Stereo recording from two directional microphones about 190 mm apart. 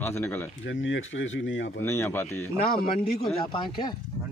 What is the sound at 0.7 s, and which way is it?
Speech, 75° left (ahead or behind).